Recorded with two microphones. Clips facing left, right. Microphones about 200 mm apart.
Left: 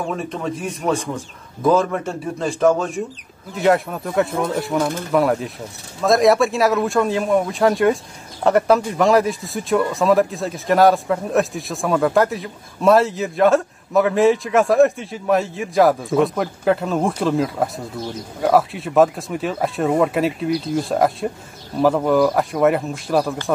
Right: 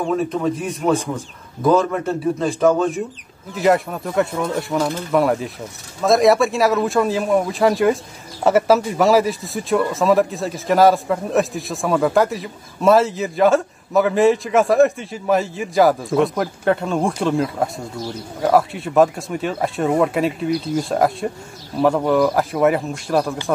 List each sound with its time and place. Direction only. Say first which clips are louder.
0.0 s speech: right 5 dB; centre (ahead or behind)